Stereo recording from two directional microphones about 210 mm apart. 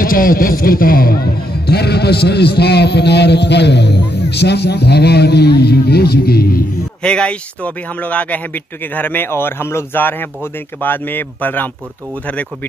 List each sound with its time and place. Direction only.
0.0 s speech: 40° left (ahead or behind)
7.0 s speech: 5° left (ahead or behind)